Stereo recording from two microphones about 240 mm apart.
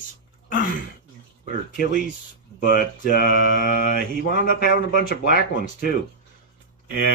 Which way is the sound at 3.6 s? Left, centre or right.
Left.